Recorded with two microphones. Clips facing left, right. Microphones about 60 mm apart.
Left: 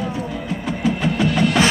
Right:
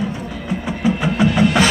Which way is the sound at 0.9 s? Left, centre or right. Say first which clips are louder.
Right 3 dB; centre.